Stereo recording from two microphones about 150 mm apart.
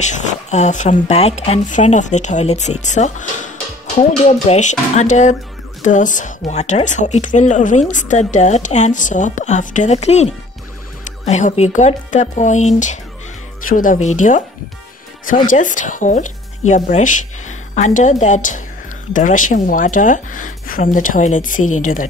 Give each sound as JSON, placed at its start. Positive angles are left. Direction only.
{"t": 0.0, "sound": "speech", "side_deg": 55}
{"t": 13.7, "sound": "speech", "side_deg": 65}